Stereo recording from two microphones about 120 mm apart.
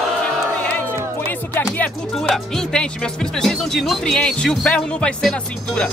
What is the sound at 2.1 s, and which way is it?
Speech, 5° left (ahead or behind).